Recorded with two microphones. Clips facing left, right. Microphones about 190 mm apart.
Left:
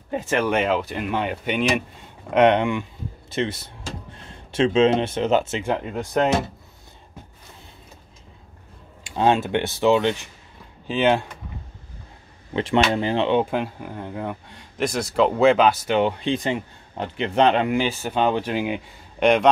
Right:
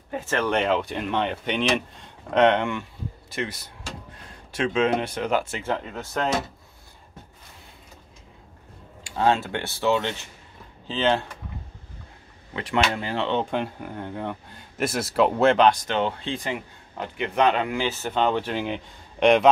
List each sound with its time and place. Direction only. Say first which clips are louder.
0.1 s speech: left 3 dB; 15° left (ahead or behind)
9.0 s speech: left 3 dB; 20° left (ahead or behind)
12.5 s speech: left 5 dB; 25° left (ahead or behind); by 19.5 s centre (ahead or behind)